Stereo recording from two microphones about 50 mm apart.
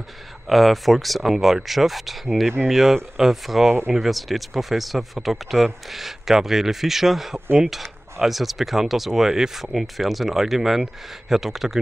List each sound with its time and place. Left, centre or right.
0.5 s speech: centre